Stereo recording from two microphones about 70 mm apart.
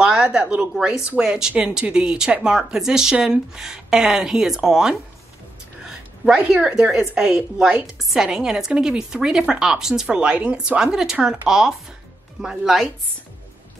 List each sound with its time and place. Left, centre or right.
0.0 s a woman's voice: centre
10.8 s a woman's voice: centre